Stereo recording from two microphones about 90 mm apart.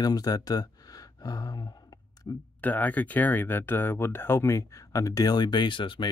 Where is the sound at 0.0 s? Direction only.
45° left (ahead or behind).